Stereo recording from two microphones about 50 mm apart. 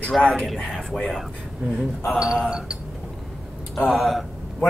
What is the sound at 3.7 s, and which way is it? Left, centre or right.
Speech, centre.